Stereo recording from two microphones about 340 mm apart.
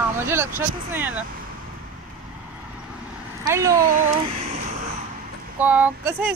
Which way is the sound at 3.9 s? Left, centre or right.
Centre.